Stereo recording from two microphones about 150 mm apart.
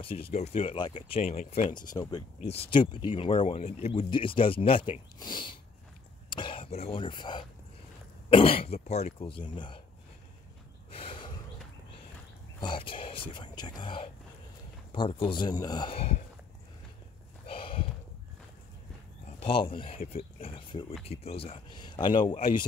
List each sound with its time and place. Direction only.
0.0 s speech: 40° left (ahead or behind)
2.0 s speech: 25° left (ahead or behind)
2.4 s speech: 40° left (ahead or behind)
10.9 s snort: 40° left (ahead or behind)
12.5 s speech: 30° left (ahead or behind)
17.5 s a sound: 35° left (ahead or behind)
19.4 s speech: 35° left (ahead or behind)